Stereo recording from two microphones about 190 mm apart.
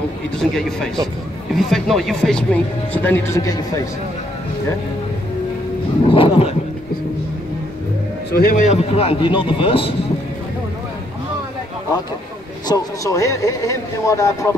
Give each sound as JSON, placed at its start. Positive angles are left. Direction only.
{"t": 0.4, "sound": "a man's voice", "side_deg": 5}
{"t": 6.0, "sound": "a man's voice", "side_deg": 30}
{"t": 8.4, "sound": "a man's voice", "side_deg": 50}
{"t": 8.6, "sound": "a man's voice", "side_deg": 30}
{"t": 12.6, "sound": "speech", "side_deg": 15}